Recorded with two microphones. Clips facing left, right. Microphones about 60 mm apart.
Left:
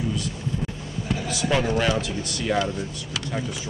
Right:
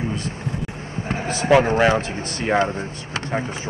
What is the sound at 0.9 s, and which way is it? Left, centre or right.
Speech, right.